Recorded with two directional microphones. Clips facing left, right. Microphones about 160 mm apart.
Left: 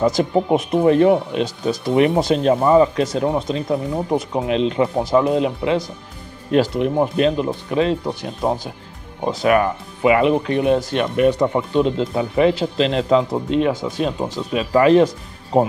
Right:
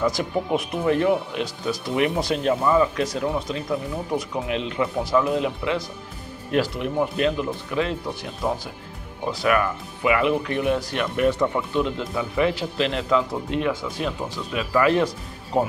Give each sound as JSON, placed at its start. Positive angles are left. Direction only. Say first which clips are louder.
{"t": 0.2, "sound": "speech", "louder": "left 7 dB", "side_deg": 30}
{"t": 9.2, "sound": "speech", "louder": "left 5 dB", "side_deg": 25}